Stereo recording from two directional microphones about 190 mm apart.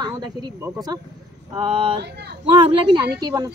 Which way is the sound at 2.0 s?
60° right (ahead or behind).